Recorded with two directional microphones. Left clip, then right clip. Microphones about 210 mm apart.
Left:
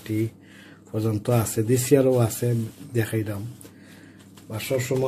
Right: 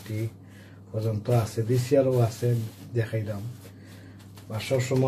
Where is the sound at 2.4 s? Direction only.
60° left (ahead or behind).